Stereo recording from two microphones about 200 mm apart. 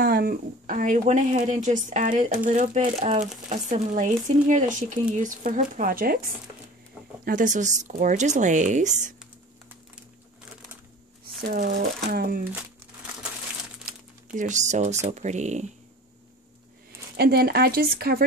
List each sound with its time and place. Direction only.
0.0 s speech: 50° right (ahead or behind)
7.2 s speech: 40° right (ahead or behind)
11.4 s speech: 45° right (ahead or behind)
13.8 s speech: 40° right (ahead or behind)
17.2 s speech: 50° right (ahead or behind)